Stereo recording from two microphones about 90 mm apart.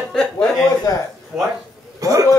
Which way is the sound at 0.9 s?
40° left (ahead or behind).